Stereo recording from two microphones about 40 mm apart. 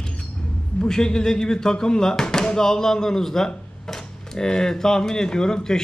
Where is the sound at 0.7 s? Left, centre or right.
Centre.